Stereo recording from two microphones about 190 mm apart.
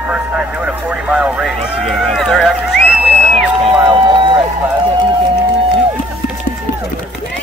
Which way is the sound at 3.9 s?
25° right (ahead or behind).